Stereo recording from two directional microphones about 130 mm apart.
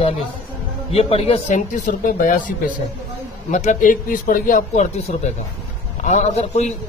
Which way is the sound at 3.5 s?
70° left (ahead or behind).